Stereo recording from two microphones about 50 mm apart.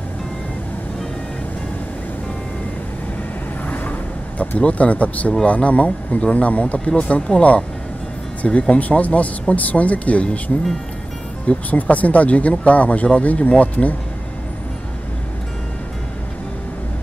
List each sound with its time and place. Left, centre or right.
3.6 s vehicle: left
4.6 s speech: left
6.9 s speech: centre
11.4 s speech: left